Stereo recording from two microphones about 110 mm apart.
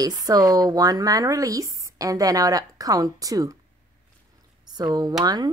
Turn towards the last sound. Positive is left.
turn(degrees=-35)  # may be behind; listen again after turning